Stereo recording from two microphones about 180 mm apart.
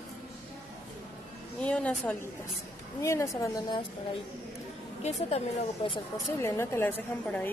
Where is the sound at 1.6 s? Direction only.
5° left (ahead or behind).